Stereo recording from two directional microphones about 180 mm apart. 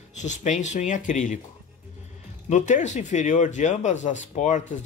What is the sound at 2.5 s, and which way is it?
A man's voice, 40° left (ahead or behind).